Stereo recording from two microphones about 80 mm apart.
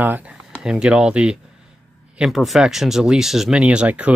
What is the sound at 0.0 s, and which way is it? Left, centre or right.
Speech, right.